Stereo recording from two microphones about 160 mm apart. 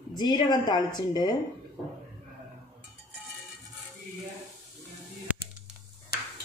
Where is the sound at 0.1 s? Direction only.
25° left (ahead or behind).